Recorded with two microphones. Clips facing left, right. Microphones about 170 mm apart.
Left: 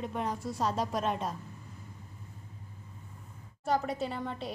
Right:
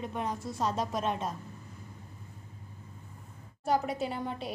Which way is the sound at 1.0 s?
5° right (ahead or behind).